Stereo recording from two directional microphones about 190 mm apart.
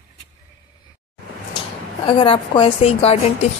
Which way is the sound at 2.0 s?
25° left (ahead or behind).